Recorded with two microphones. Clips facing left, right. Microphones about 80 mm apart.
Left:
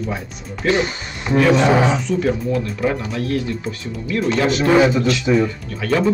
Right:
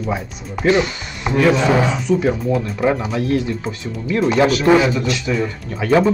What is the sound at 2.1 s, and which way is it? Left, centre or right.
Speech, centre.